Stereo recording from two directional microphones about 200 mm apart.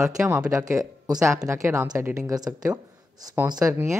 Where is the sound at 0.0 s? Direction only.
15° right (ahead or behind).